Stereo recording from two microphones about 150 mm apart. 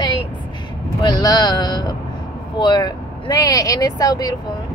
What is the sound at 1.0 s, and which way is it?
Speech, 25° left (ahead or behind).